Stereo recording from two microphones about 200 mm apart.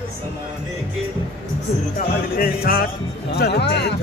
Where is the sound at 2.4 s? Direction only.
45° left (ahead or behind).